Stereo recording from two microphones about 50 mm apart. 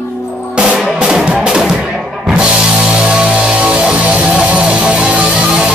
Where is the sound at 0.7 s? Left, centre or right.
Centre.